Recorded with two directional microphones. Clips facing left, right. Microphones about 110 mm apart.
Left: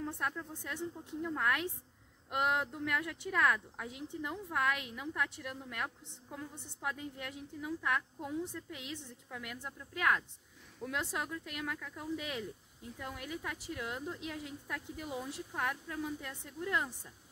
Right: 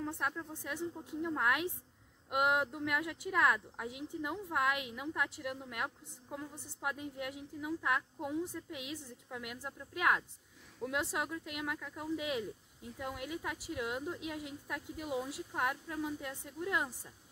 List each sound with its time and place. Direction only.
0.0 s speech: 10° right (ahead or behind)